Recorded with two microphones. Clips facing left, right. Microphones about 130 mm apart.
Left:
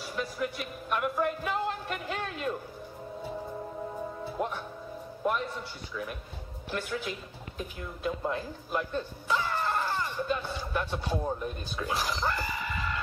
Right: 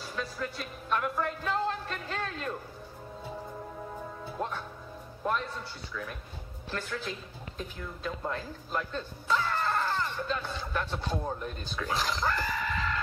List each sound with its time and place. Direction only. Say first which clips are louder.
0.0 s music: left 3 dB; 15° left (ahead or behind)
4.4 s speech: left 2 dB; 15° left (ahead or behind)
6.7 s speech: left 2 dB; 15° left (ahead or behind)